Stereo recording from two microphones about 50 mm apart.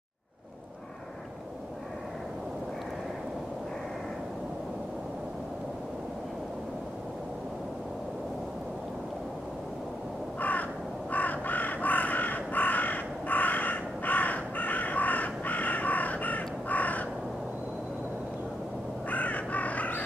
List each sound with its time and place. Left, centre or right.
10.4 s crow: left
19.0 s crow: left